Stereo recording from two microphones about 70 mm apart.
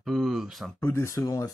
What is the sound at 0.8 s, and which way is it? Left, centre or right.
Speech, left.